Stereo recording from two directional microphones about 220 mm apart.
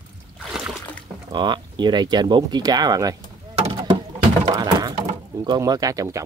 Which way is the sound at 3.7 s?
25° right (ahead or behind).